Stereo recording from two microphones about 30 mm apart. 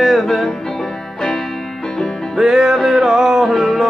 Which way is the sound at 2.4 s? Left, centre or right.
Centre.